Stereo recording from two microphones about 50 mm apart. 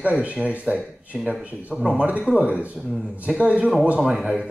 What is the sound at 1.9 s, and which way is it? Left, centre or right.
Speech, right.